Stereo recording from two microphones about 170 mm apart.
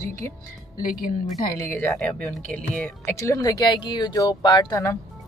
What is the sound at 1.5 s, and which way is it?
Speech, 15° left (ahead or behind).